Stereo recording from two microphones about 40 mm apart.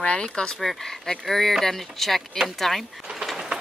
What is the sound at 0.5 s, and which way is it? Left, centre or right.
Speech, centre.